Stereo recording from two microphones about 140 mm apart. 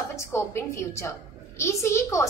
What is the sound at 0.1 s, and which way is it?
A woman's voice, 20° left (ahead or behind).